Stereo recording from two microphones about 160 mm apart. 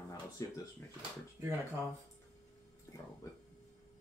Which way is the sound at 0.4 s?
20° left (ahead or behind).